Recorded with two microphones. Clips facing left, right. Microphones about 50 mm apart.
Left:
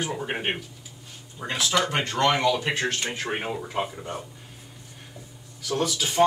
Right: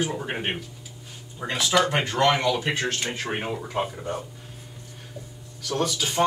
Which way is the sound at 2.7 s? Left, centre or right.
Centre.